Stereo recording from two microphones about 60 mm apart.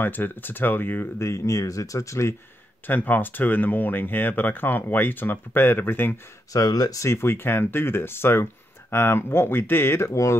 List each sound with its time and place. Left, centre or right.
0.0 s speech: left
1.2 s speech: left
2.9 s speech: left
6.5 s speech: left
7.1 s speech: left